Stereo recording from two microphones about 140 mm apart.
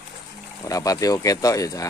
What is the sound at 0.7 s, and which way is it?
Speech, 25° left (ahead or behind).